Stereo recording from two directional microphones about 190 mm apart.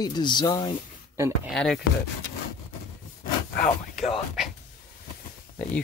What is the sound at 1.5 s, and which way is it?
Speech, centre (ahead or behind).